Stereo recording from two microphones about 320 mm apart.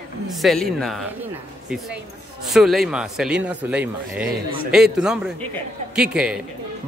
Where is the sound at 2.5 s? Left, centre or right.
Centre.